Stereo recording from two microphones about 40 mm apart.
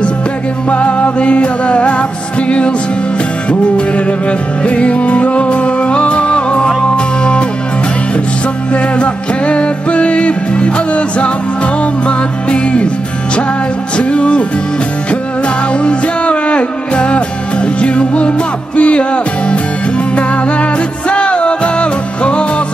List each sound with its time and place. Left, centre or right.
0.7 s music: left
3.4 s music: left
8.7 s music: left
13.9 s music: left
15.8 s music: left
21.1 s music: left